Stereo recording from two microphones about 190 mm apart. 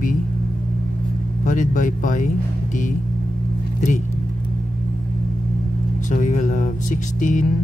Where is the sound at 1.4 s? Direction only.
45° left (ahead or behind).